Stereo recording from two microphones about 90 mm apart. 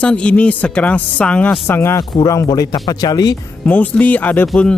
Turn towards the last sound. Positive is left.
turn(degrees=20)  # may be behind; listen again after turning